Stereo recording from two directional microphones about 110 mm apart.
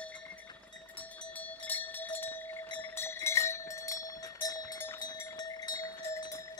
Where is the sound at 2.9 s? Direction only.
25° left (ahead or behind).